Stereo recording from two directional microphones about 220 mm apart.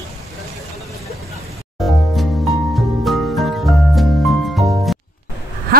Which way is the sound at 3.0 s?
Centre (ahead or behind).